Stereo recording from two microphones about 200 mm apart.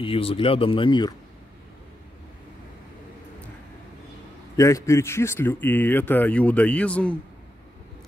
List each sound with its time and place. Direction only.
0.0 s speech: 30° left (ahead or behind)
4.6 s speech: 15° left (ahead or behind)